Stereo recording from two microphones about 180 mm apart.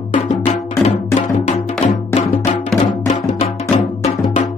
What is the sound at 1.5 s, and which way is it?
Music, 40° left (ahead or behind).